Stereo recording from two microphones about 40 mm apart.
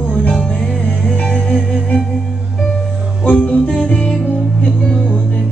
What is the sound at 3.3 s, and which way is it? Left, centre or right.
Music, left.